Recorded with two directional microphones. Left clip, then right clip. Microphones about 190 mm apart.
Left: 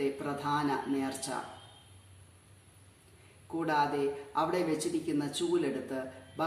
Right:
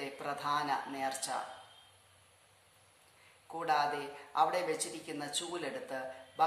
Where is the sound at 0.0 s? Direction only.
15° right (ahead or behind).